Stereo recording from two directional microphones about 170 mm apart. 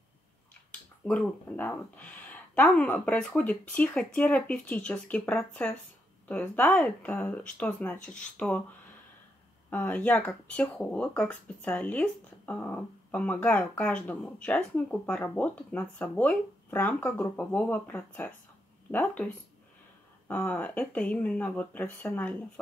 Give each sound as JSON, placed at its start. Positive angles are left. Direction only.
{"t": 1.0, "sound": "speech", "side_deg": 5}
{"t": 9.7, "sound": "speech", "side_deg": 10}